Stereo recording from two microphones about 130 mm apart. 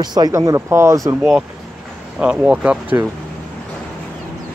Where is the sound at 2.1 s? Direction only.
10° right (ahead or behind).